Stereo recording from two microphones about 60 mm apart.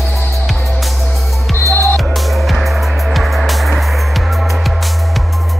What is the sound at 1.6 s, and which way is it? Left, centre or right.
Music, left.